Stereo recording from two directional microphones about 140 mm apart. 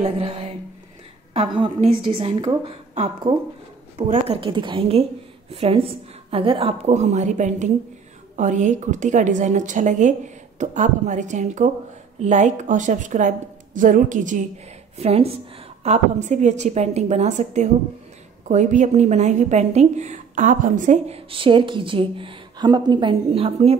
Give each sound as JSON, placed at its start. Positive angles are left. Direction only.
{"t": 0.0, "sound": "speech", "side_deg": -45}
{"t": 1.8, "sound": "a woman's voice", "side_deg": -40}
{"t": 4.4, "sound": "a woman's voice", "side_deg": -35}
{"t": 6.9, "sound": "a woman's voice", "side_deg": -55}
{"t": 15.0, "sound": "a woman's voice", "side_deg": -45}
{"t": 21.3, "sound": "a woman's voice", "side_deg": -40}